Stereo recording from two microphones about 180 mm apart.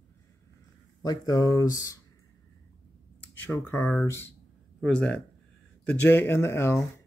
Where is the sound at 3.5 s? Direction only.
15° left (ahead or behind).